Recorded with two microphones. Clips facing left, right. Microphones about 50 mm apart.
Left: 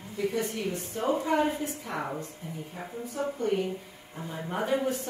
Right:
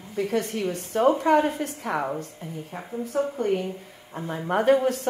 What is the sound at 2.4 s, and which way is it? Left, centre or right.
Speech, right.